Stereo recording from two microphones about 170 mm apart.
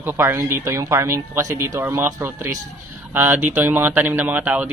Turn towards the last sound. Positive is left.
turn(degrees=-10)  # may be behind; listen again after turning